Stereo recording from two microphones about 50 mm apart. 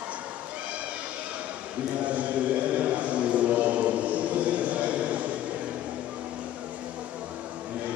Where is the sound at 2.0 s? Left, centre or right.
Right.